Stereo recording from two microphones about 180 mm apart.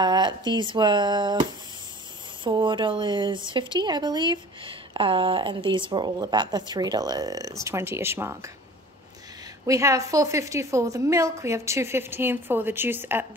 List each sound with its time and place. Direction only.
0.0 s speech: 25° right (ahead or behind)
9.7 s a woman's voice: 15° right (ahead or behind)